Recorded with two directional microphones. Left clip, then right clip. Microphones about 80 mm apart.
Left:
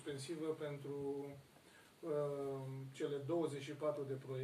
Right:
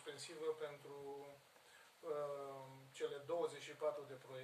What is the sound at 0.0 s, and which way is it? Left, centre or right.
Speech, right.